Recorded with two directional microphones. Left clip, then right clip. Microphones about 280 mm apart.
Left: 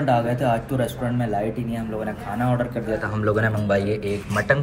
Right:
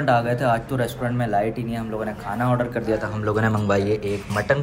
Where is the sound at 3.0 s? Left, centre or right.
Centre.